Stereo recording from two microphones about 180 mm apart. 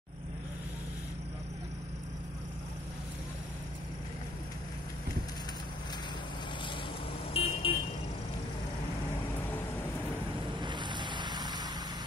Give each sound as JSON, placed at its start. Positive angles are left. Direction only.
{"t": 7.3, "sound": "vehicle", "side_deg": 30}
{"t": 10.6, "sound": "boat", "side_deg": -25}